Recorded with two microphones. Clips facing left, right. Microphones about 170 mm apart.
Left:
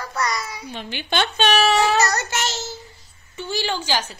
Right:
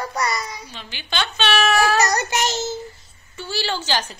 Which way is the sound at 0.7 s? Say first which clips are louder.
Left 5 dB; 55° left (ahead or behind).